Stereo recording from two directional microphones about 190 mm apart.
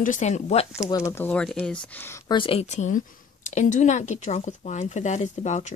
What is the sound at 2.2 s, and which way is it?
Speech, 25° left (ahead or behind).